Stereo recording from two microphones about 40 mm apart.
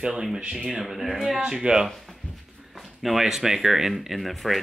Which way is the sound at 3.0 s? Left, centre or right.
Centre.